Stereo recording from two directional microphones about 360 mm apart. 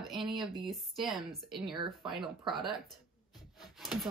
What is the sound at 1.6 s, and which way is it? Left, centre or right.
Speech, centre.